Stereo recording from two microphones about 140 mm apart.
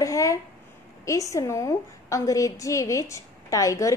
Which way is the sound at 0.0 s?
25° left (ahead or behind).